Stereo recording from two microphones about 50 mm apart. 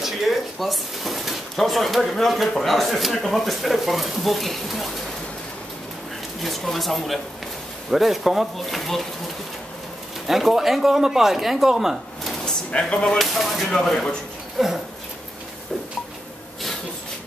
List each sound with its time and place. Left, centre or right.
0.0 s speech: centre
6.4 s speech: centre
10.2 s speech: centre
12.7 s speech: left
13.2 s speech: centre
14.6 s speech: centre